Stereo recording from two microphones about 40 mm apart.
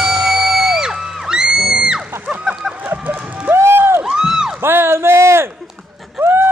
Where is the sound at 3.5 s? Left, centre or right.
Right.